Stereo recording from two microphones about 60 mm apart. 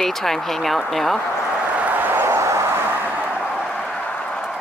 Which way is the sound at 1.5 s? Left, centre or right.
Right.